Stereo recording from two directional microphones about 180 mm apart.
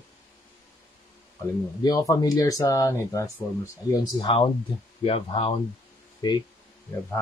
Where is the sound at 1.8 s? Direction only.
25° left (ahead or behind).